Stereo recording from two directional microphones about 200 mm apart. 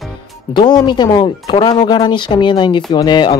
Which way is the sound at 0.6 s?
20° left (ahead or behind).